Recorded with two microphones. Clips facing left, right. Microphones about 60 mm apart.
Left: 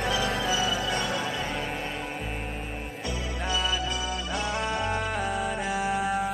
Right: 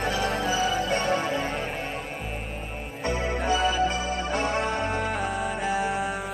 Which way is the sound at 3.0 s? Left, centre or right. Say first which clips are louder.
Right 7 dB; right.